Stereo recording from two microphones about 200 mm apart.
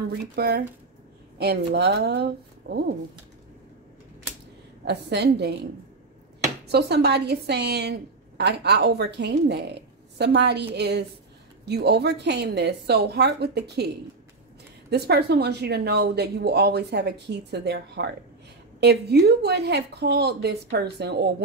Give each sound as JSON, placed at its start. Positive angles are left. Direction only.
{"t": 0.1, "sound": "speech", "side_deg": -50}
{"t": 4.8, "sound": "speech", "side_deg": -55}
{"t": 6.7, "sound": "speech", "side_deg": -55}